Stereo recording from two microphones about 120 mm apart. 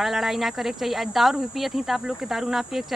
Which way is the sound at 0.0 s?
Centre (ahead or behind).